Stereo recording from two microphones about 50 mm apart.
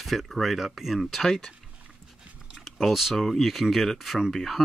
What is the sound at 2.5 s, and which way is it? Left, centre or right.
Speech, centre.